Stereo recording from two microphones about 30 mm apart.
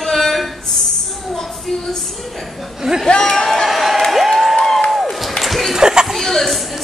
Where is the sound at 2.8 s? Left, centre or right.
Centre.